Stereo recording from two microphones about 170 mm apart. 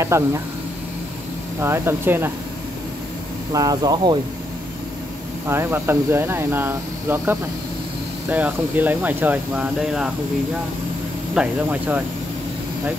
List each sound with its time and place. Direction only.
0.0 s speech: 15° right (ahead or behind)
1.6 s speech: 15° right (ahead or behind)
3.5 s speech: 20° right (ahead or behind)
5.5 s speech: 15° right (ahead or behind)
11.3 s speech: 10° right (ahead or behind)